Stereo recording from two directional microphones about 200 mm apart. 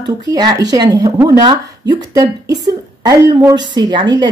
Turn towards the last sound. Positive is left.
turn(degrees=-25)  # may be behind; listen again after turning